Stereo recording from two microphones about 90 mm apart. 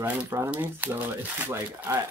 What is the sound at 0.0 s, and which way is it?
Speech, 20° right (ahead or behind).